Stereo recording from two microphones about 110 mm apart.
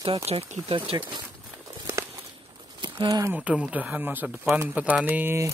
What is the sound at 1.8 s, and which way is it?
Walk, 25° right (ahead or behind).